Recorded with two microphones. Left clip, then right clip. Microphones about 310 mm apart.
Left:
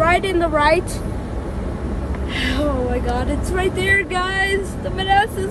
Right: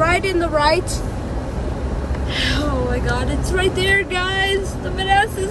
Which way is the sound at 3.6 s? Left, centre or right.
Centre.